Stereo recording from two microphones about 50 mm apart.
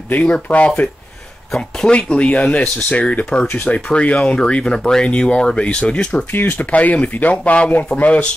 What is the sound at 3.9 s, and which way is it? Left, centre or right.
Speech, left.